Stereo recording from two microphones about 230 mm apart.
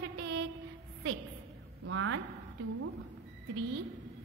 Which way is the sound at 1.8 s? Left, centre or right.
Right.